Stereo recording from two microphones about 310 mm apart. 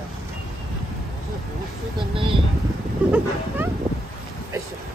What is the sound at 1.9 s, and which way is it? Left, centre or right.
Speech, centre.